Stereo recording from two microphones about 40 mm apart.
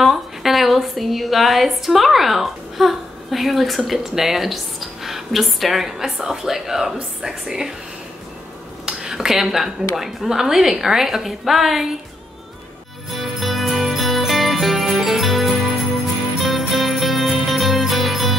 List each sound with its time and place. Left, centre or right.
0.0 s a woman's voice: centre
8.8 s speech: centre
13.1 s music: centre